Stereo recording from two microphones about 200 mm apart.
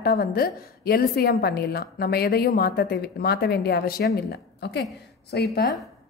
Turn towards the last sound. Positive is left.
turn(degrees=55)  # may be behind; listen again after turning